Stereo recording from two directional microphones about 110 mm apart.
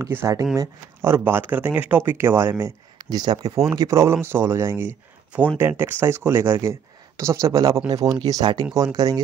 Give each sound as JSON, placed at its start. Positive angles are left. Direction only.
{"t": 0.0, "sound": "speech", "side_deg": -25}
{"t": 3.0, "sound": "speech", "side_deg": -40}